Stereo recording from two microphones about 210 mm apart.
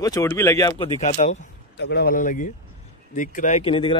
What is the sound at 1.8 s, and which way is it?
Speech, 50° left (ahead or behind).